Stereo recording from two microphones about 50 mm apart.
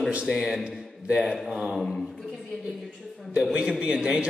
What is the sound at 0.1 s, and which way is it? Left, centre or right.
A man's voice, centre.